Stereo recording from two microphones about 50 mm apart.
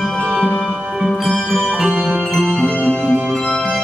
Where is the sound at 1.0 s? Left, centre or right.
Centre.